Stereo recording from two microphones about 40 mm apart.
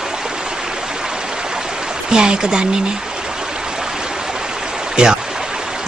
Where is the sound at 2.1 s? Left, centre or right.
Centre.